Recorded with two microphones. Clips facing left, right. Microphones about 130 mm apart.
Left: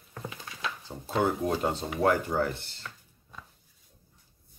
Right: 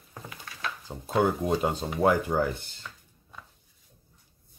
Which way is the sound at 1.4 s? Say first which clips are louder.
Right 2 dB; 15° right (ahead or behind).